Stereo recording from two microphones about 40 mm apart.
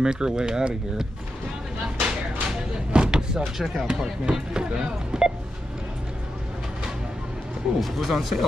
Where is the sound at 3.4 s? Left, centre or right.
Centre.